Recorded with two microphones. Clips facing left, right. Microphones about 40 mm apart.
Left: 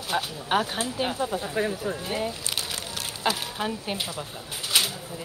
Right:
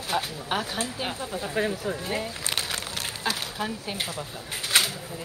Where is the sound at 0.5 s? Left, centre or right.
Left.